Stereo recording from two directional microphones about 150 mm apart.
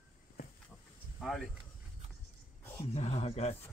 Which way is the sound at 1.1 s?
Centre (ahead or behind).